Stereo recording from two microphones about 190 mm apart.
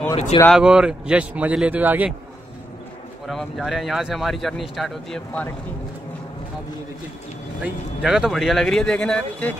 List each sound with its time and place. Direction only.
0.1 s speech: 30° left (ahead or behind)
0.5 s speech: 5° right (ahead or behind)
3.3 s speech: centre (ahead or behind)
7.6 s speech: 5° right (ahead or behind)